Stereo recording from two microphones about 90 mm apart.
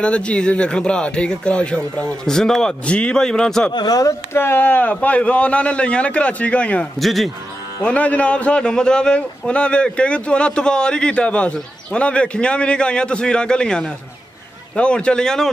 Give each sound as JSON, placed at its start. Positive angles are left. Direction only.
{"t": 0.0, "sound": "a man's voice", "side_deg": 10}
{"t": 3.7, "sound": "speech", "side_deg": 45}
{"t": 4.3, "sound": "a man's voice", "side_deg": 25}
{"t": 7.0, "sound": "speech", "side_deg": 0}
{"t": 7.8, "sound": "a man's voice", "side_deg": 15}